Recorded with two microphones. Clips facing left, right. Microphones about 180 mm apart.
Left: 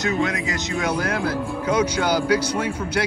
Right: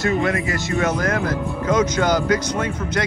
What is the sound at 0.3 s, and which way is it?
Speech, 20° left (ahead or behind).